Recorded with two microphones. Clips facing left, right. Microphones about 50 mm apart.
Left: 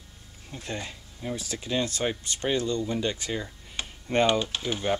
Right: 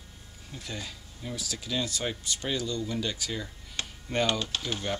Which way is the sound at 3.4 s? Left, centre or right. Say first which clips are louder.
Left 1 dB; centre.